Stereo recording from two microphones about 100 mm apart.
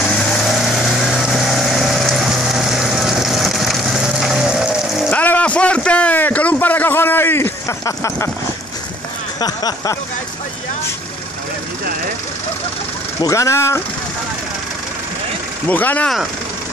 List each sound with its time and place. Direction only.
0.0 s vehicle: 5° left (ahead or behind)
5.1 s a sound: 15° left (ahead or behind); by 8.3 s 30° left (ahead or behind)
9.4 s speech: 40° left (ahead or behind)
13.2 s speech: 30° left (ahead or behind)
15.7 s speech: 15° left (ahead or behind)